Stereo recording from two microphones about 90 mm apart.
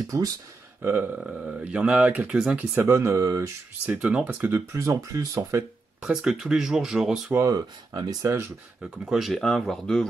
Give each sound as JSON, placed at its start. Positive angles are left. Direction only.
{"t": 0.8, "sound": "a sound", "side_deg": -20}
{"t": 1.2, "sound": "speech", "side_deg": -5}
{"t": 2.7, "sound": "speech", "side_deg": -30}
{"t": 3.9, "sound": "speech", "side_deg": -10}
{"t": 4.5, "sound": "speech", "side_deg": -30}
{"t": 5.9, "sound": "speech", "side_deg": -10}
{"t": 7.4, "sound": "speech", "side_deg": -50}
{"t": 9.0, "sound": "speech", "side_deg": -5}